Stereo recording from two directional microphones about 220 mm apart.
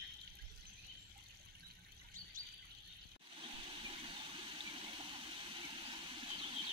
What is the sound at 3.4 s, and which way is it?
Water, 25° right (ahead or behind).